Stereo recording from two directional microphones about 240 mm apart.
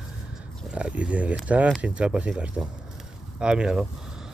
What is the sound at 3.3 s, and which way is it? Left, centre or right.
Speech, centre.